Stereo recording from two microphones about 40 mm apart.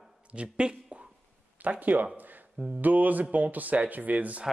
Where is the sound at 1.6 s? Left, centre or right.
Right.